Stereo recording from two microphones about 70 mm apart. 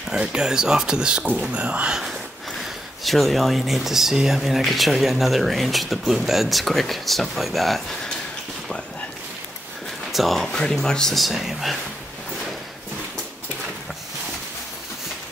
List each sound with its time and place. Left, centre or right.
0.1 s speech: centre
2.0 s speech: centre
10.1 s speech: centre